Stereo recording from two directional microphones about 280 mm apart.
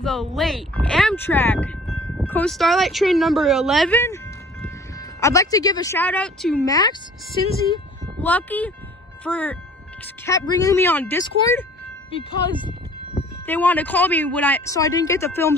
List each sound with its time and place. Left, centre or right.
0.0 s a woman's voice: centre
8.2 s a woman's voice: centre